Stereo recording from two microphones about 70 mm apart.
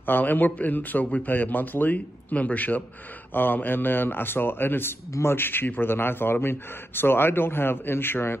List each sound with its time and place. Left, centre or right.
0.0 s a man's voice: left